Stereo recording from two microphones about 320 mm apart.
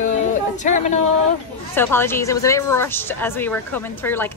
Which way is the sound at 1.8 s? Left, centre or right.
Centre.